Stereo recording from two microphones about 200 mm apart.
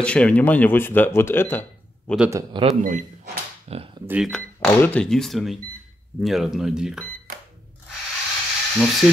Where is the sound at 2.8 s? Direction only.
40° right (ahead or behind).